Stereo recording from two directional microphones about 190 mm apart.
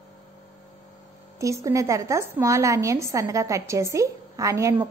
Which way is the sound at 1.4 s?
15° right (ahead or behind).